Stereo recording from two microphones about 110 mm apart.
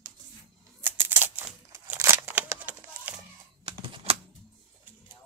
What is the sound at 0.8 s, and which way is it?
Scissors, 20° right (ahead or behind).